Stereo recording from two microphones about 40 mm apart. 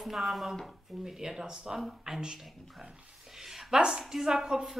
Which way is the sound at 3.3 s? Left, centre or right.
Centre.